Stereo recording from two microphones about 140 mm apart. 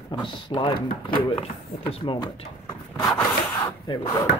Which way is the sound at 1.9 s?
45° left (ahead or behind).